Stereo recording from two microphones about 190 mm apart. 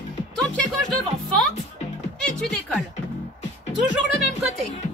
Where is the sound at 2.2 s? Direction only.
5° left (ahead or behind).